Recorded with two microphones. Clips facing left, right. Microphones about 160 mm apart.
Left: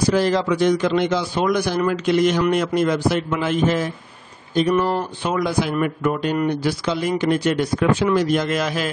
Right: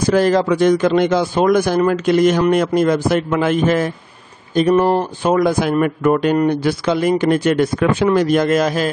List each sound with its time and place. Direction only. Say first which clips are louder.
0.1 s speech: right 7 dB; 50° right (ahead or behind)